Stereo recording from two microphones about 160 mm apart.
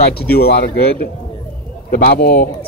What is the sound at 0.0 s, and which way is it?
Speech, 75° left (ahead or behind).